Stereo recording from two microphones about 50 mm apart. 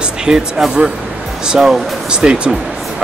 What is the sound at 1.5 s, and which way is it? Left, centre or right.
Speech, centre.